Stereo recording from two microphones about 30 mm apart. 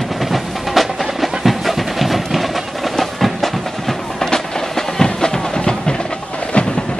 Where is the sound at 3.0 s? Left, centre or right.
Centre; by 5.9 s left.